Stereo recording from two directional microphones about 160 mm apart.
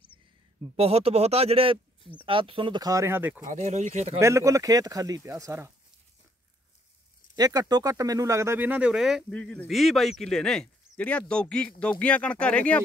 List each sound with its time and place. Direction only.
0.7 s speech: 40° right (ahead or behind); by 3.3 s 15° right (ahead or behind)
3.4 s speech: 45° right (ahead or behind)
4.2 s speech: 20° right (ahead or behind)
7.3 s speech: 25° right (ahead or behind); by 12.8 s 10° left (ahead or behind)